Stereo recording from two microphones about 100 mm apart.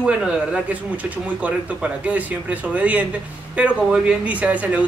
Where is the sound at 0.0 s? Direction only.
10° right (ahead or behind).